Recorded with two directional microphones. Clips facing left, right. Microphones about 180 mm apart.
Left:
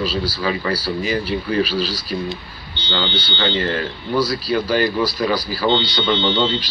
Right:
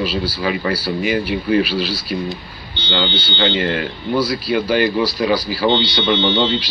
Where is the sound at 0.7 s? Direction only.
35° left (ahead or behind).